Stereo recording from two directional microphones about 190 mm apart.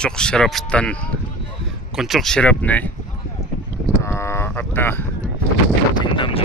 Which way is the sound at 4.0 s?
15° left (ahead or behind).